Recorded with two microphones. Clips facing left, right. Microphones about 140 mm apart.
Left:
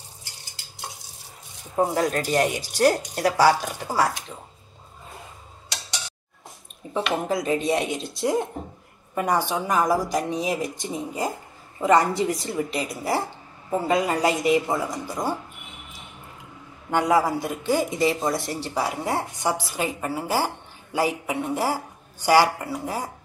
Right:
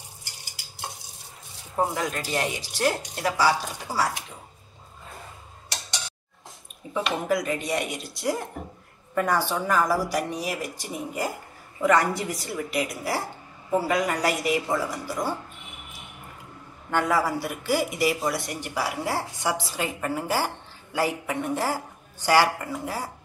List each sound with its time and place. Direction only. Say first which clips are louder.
2.0 s speech: left 6 dB; 40° left (ahead or behind)
7.0 s a woman's voice: left 2 dB; centre (ahead or behind)
7.2 s a woman's voice: left 3 dB; 25° left (ahead or behind)
8.6 s a sound: left 2 dB; 25° left (ahead or behind)
9.1 s a woman's voice: left 1 dB; 20° left (ahead or behind)
16.9 s a woman's voice: left 3 dB; 15° left (ahead or behind)